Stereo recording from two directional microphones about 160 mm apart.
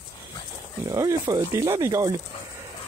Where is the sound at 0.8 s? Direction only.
20° right (ahead or behind).